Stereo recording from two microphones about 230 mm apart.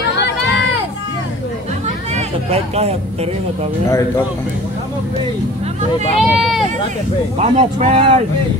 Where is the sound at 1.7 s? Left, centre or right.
Right.